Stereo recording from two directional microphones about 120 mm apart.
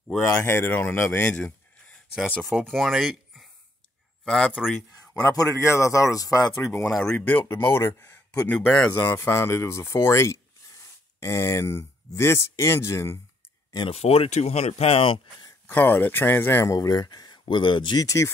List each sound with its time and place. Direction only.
0.3 s speech: 20° left (ahead or behind); by 4.8 s 5° right (ahead or behind)
5.3 s speech: 30° left (ahead or behind)
6.9 s speech: centre (ahead or behind)
7.2 s speech: 15° left (ahead or behind)
13.8 s speech: 55° left (ahead or behind)
15.7 s speech: 15° left (ahead or behind); by 18.0 s 40° left (ahead or behind)
18.0 s speech: 25° left (ahead or behind)